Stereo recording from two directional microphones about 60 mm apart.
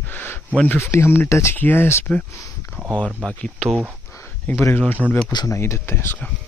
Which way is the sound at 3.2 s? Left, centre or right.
Centre.